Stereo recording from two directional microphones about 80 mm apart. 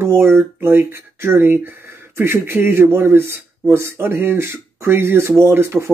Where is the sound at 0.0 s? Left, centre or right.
Right.